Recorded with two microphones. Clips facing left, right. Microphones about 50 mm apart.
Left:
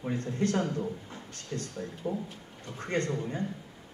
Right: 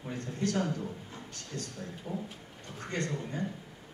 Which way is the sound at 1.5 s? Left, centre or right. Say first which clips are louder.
Left 4 dB; centre.